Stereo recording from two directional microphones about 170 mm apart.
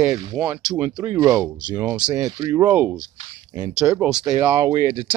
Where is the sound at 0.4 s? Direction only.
10° right (ahead or behind).